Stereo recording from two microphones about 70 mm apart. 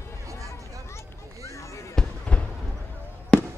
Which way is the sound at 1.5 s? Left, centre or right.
Left.